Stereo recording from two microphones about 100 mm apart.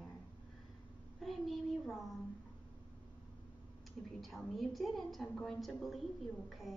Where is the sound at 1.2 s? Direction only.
Centre (ahead or behind).